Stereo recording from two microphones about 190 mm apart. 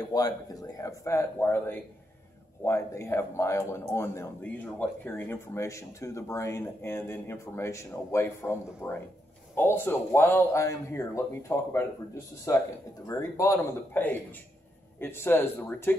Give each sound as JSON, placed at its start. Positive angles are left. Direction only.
{"t": 0.1, "sound": "a man's voice", "side_deg": 20}